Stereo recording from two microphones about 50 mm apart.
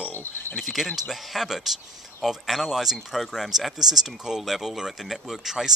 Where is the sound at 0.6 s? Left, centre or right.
Centre.